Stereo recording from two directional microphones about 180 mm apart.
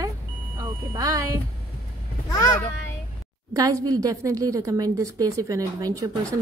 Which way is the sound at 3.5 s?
20° right (ahead or behind).